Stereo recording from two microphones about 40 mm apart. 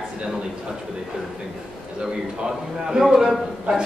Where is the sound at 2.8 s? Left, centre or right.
Centre.